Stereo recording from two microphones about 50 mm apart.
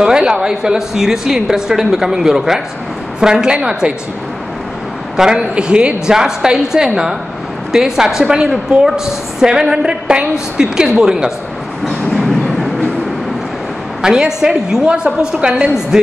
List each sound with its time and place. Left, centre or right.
0.0 s a woman's voice: centre
5.1 s a man's voice: centre
11.8 s train: centre
14.0 s a woman's voice: centre